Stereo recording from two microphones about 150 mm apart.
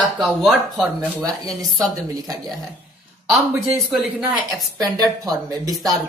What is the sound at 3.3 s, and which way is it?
Speech, centre (ahead or behind).